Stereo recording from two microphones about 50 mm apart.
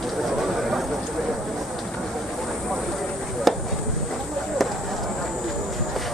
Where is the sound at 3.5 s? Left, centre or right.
Centre.